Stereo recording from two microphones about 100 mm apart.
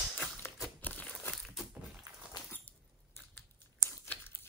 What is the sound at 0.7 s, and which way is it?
Crumpling, 15° left (ahead or behind).